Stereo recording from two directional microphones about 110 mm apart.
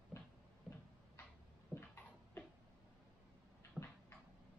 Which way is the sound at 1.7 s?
20° left (ahead or behind).